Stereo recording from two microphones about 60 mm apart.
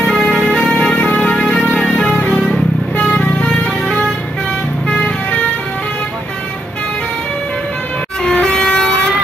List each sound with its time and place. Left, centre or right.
0.0 s music: centre
3.2 s vehicle: centre
8.2 s vehicle: centre